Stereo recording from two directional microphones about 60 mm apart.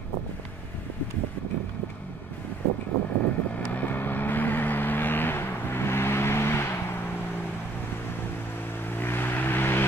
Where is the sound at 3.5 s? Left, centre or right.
Left.